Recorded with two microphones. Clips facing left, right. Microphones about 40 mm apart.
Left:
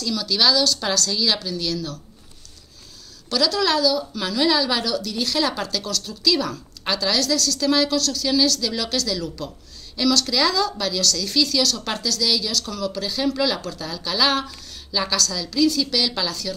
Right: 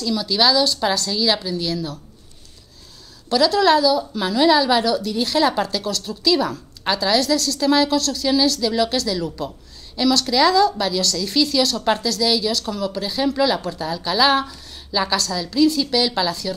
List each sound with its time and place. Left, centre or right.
0.0 s a woman's voice: centre
3.3 s a woman's voice: right
15.1 s a woman's voice: right